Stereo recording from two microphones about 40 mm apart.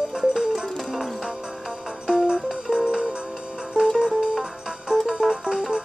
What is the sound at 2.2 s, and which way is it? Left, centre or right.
Music, centre.